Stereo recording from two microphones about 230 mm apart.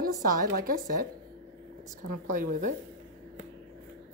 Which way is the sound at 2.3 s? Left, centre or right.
Right.